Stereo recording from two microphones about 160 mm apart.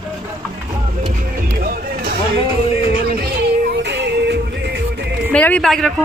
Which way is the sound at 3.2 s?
80° right.